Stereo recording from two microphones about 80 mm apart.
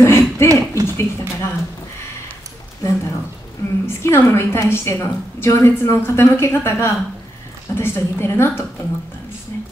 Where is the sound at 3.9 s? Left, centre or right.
Left.